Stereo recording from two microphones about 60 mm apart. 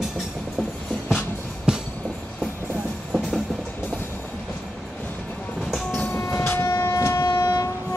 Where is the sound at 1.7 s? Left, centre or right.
Centre.